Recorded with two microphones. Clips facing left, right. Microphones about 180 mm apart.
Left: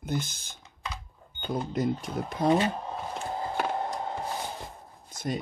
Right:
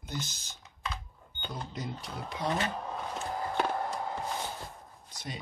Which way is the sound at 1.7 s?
50° left (ahead or behind).